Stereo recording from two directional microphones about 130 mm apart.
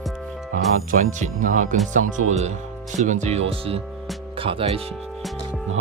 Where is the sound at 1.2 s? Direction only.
75° right (ahead or behind).